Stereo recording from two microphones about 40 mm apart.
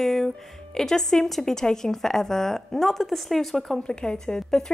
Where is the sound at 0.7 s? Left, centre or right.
Centre.